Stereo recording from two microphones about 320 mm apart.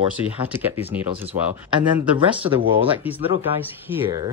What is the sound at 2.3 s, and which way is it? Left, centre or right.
Speech, centre.